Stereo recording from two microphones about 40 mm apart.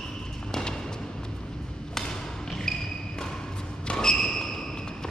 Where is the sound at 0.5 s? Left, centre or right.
Centre.